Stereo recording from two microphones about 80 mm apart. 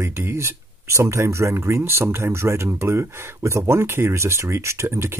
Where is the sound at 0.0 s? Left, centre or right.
Right.